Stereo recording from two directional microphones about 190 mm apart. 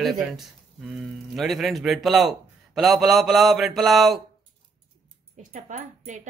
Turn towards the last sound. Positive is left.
turn(degrees=-40)  # may be behind; listen again after turning